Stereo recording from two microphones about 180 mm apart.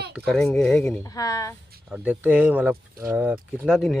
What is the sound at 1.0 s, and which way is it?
Speech, 20° left (ahead or behind).